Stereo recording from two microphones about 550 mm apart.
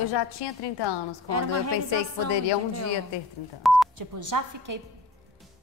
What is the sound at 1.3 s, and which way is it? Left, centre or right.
Speech, right.